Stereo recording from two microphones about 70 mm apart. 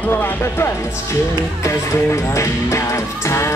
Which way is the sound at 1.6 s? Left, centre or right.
Left.